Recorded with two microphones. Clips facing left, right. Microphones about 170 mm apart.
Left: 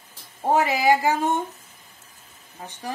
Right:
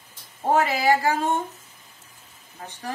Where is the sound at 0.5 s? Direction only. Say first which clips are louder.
Left 1 dB; 15° left (ahead or behind).